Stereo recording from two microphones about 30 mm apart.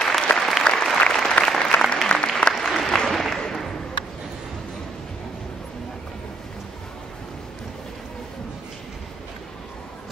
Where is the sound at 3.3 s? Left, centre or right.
Centre.